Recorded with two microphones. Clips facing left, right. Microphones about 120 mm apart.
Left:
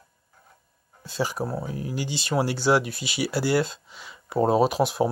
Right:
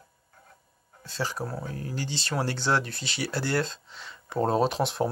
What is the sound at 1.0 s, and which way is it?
Speech, 15° left (ahead or behind).